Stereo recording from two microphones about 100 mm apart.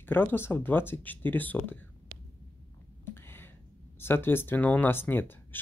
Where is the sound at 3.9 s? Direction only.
20° left (ahead or behind).